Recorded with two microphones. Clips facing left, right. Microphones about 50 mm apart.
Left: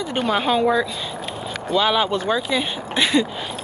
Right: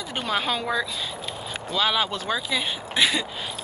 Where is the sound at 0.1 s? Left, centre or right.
Centre.